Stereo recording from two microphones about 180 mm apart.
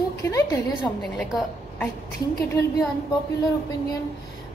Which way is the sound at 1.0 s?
Centre (ahead or behind).